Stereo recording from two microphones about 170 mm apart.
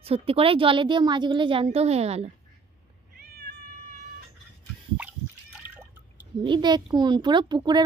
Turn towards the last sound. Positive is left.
turn(degrees=-25)  # may be behind; listen again after turning